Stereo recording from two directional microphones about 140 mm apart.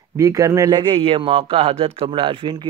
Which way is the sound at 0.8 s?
40° right (ahead or behind).